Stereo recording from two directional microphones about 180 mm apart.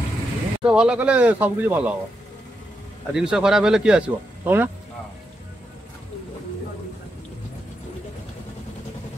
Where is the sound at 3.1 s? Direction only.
5° right (ahead or behind).